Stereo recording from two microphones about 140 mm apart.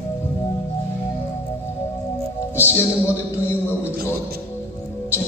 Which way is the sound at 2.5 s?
15° left (ahead or behind).